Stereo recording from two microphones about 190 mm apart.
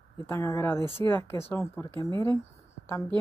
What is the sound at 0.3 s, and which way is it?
Speech, 15° left (ahead or behind).